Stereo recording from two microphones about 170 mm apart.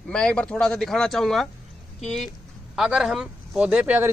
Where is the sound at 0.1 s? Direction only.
5° left (ahead or behind).